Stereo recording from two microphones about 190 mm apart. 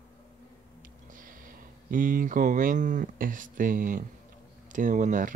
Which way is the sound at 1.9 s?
45° right (ahead or behind).